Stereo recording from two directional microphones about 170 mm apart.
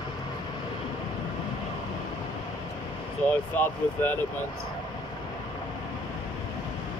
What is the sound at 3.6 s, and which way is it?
Speech, 10° left (ahead or behind).